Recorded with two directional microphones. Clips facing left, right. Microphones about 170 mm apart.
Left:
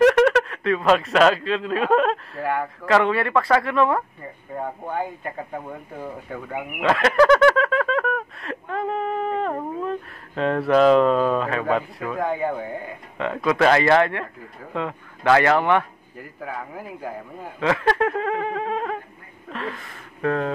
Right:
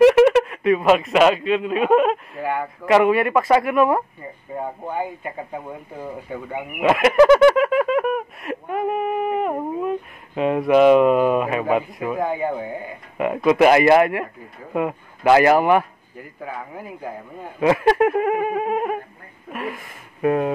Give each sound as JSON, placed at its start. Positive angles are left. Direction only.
{"t": 0.0, "sound": "speech", "side_deg": -10}
{"t": 2.8, "sound": "a man's voice", "side_deg": -15}
{"t": 4.6, "sound": "speech", "side_deg": -5}
{"t": 13.2, "sound": "speech", "side_deg": -15}
{"t": 16.2, "sound": "speech", "side_deg": 0}
{"t": 17.6, "sound": "speech", "side_deg": -15}